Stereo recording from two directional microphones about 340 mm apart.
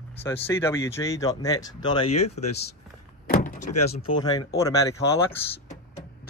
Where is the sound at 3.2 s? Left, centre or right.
Left.